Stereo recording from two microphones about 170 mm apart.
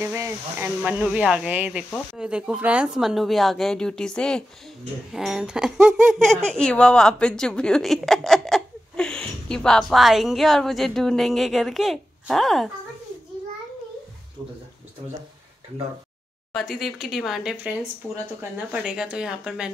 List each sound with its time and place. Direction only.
0.0 s a woman's voice: 10° right (ahead or behind)
16.5 s a woman's voice: centre (ahead or behind)
18.0 s speech: 10° left (ahead or behind)
18.4 s a woman's voice: 5° right (ahead or behind)